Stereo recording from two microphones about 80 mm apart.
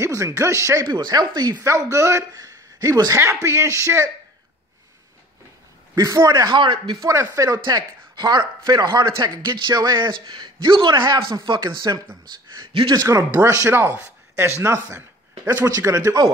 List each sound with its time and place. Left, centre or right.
0.0 s speech: right
0.9 s speech: right
1.6 s speech: right
5.9 s speech: right
6.2 s speech: right
7.0 s speech: right
7.6 s speech: right
13.1 s speech: right